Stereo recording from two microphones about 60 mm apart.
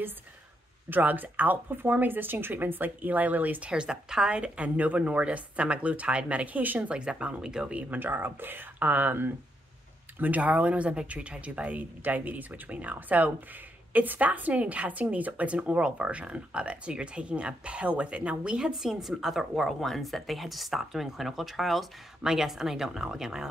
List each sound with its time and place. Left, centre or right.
0.8 s speech: right
3.7 s speech: centre; by 6.9 s right
6.9 s speech: centre
7.9 s speech: right; by 23.5 s centre